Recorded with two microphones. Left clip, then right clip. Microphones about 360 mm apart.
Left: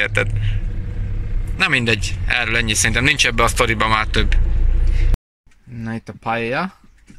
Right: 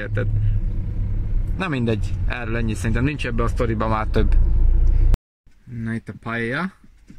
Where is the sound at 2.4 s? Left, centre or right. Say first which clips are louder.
Left 11 dB; left.